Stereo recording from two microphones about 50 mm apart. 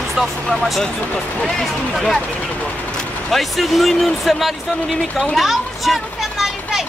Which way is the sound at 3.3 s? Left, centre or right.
Centre.